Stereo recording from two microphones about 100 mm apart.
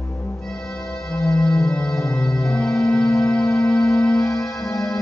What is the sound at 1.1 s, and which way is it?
Organ, 10° left (ahead or behind).